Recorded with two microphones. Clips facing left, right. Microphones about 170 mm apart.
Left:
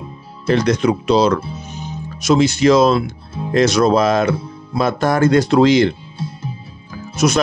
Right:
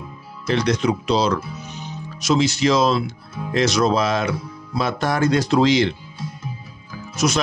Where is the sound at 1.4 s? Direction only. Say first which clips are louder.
Left 4 dB; 30° left (ahead or behind).